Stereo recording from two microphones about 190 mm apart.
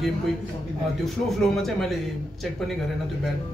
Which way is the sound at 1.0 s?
Centre (ahead or behind).